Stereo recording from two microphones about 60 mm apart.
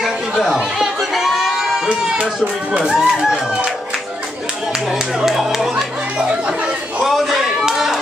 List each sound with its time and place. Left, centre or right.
0.0 s chatter: centre
1.9 s speech: centre
2.8 s speech: centre
4.9 s chatter: centre
7.0 s a sound: centre